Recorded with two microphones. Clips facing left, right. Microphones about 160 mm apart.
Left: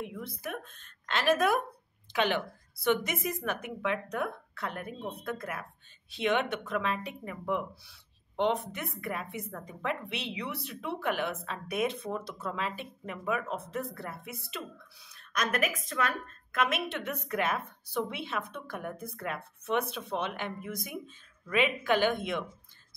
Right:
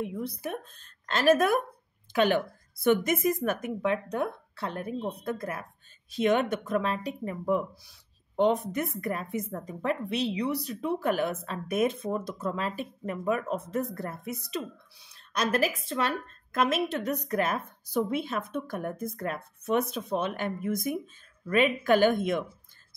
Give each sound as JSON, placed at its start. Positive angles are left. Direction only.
{"t": 0.0, "sound": "a woman's voice", "side_deg": -35}
{"t": 15.0, "sound": "a woman's voice", "side_deg": -30}